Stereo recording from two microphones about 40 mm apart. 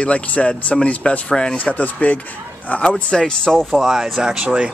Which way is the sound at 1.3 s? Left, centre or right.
Left.